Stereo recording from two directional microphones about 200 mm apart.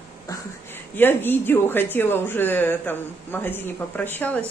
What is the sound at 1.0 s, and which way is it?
Speech, 10° left (ahead or behind).